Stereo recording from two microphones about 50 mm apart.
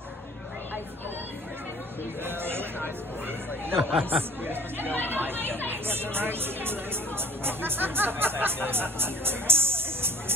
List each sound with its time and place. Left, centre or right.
2.2 s a sound: right
3.7 s speech: right
5.1 s chatter: right
6.1 s speech: right